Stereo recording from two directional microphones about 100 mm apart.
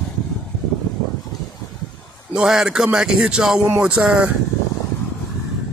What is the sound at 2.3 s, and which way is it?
Speech, 5° right (ahead or behind).